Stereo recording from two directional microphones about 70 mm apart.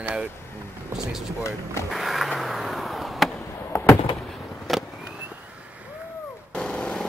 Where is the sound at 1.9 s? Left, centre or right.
Centre.